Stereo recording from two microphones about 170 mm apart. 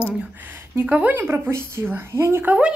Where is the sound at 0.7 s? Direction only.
10° right (ahead or behind).